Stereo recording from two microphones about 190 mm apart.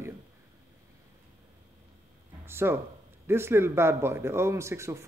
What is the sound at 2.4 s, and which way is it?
Speech, 10° right (ahead or behind).